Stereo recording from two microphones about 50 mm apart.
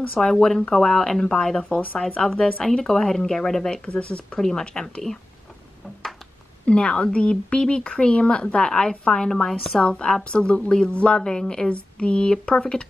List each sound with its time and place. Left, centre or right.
0.2 s speech: centre
3.8 s speech: left
4.4 s speech: centre
6.6 s speech: left
9.3 s speech: centre
9.8 s speech: centre